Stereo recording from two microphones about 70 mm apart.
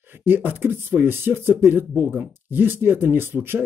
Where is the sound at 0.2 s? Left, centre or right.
Right.